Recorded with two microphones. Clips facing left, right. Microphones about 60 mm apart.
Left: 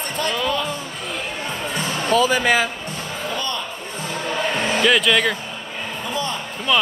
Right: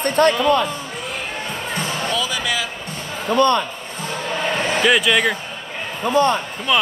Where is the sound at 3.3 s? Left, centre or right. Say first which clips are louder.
Right 13 dB; right.